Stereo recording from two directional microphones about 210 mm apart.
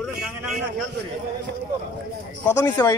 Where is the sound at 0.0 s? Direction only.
5° right (ahead or behind).